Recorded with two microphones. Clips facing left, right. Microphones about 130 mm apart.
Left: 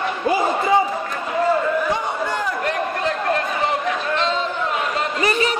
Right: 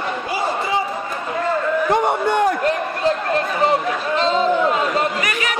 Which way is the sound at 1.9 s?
65° right (ahead or behind).